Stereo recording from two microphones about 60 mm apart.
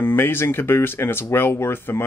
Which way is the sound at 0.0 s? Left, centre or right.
Left.